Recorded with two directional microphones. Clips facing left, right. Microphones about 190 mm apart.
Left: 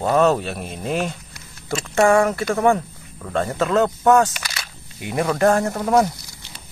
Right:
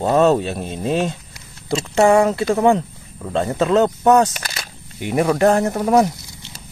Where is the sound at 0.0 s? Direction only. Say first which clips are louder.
Right 2 dB; 20° right (ahead or behind).